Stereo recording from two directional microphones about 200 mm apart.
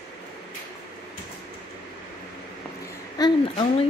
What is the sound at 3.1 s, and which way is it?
Speech, 25° left (ahead or behind).